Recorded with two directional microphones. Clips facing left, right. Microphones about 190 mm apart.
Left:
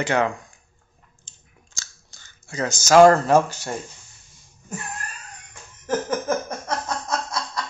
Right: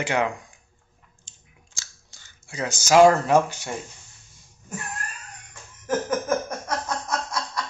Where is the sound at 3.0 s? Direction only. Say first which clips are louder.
Left 2 dB; 40° left (ahead or behind).